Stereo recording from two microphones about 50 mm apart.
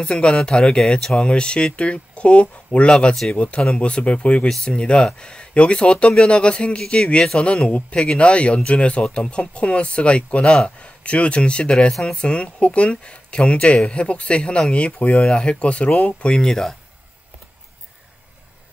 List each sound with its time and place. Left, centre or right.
0.0 s speech: centre